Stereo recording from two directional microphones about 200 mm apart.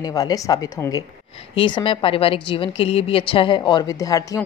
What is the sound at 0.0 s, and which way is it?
A woman's voice, 20° left (ahead or behind).